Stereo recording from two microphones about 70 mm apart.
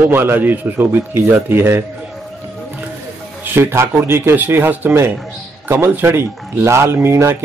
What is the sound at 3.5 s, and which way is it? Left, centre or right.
A man's voice, right.